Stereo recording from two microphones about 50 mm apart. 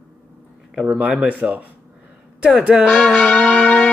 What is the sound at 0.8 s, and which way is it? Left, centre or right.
Speech, right.